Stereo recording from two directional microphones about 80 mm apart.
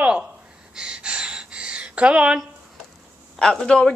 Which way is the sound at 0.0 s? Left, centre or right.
Centre.